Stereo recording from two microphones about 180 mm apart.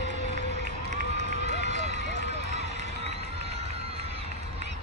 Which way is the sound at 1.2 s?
40° right (ahead or behind).